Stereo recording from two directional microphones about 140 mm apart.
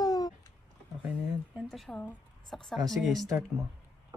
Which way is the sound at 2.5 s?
Centre (ahead or behind).